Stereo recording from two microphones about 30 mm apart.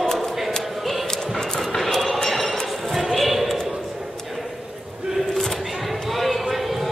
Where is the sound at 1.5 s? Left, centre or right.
Centre.